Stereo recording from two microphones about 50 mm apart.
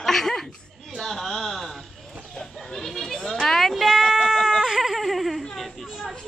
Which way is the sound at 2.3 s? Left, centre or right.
Centre.